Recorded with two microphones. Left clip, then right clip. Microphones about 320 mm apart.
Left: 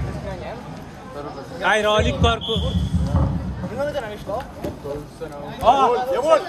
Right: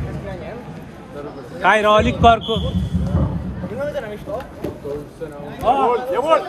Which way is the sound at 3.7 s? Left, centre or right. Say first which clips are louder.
Even; left.